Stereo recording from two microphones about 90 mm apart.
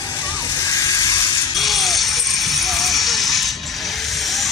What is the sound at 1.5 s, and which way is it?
Music, centre (ahead or behind).